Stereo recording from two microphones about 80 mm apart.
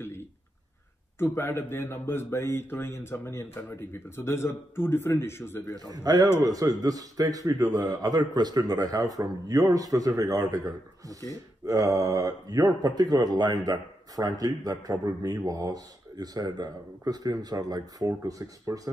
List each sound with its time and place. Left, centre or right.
0.0 s a sound: left
1.2 s speech: left
5.9 s a man's voice: right